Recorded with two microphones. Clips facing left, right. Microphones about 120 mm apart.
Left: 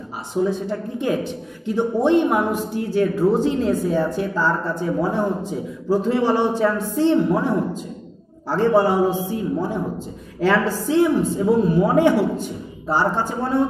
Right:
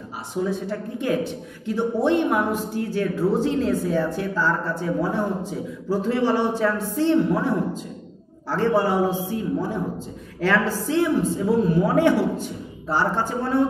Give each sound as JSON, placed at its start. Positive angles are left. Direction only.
{"t": 0.4, "sound": "a woman's voice", "side_deg": 25}